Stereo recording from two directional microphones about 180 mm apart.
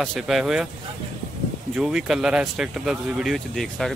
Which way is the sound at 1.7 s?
5° right (ahead or behind).